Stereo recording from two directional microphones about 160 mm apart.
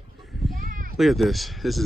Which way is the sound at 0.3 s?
Centre (ahead or behind).